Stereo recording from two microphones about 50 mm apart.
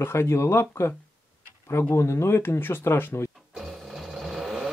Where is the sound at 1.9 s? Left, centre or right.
Left.